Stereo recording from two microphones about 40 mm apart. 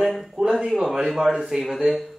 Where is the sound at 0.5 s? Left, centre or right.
Centre.